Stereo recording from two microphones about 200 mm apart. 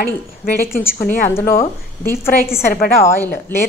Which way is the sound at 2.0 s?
10° left (ahead or behind).